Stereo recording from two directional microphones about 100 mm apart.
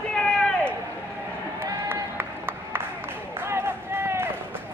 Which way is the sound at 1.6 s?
20° right (ahead or behind).